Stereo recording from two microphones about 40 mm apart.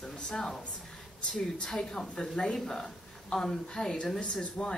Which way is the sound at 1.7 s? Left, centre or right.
Centre.